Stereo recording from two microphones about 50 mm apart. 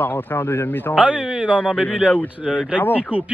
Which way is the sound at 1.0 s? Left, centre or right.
Centre.